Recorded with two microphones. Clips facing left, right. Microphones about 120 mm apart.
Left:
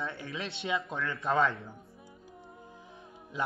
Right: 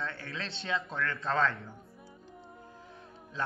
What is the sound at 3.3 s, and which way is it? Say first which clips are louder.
Speech: left 2 dB; 15° left (ahead or behind).